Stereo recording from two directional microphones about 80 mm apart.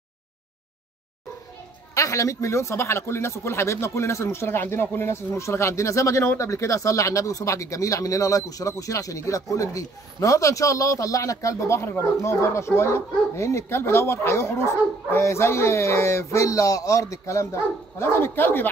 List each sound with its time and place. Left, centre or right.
2.0 s speech: left